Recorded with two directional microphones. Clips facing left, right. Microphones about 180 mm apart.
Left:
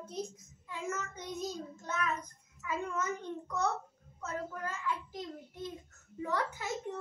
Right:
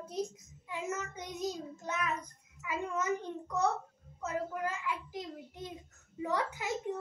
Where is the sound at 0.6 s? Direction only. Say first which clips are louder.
Right 1 dB; 15° right (ahead or behind).